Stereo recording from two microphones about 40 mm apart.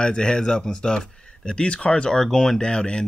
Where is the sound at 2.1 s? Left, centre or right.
Centre.